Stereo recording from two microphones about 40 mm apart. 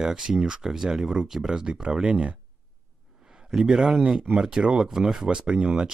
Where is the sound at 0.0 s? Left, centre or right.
Centre.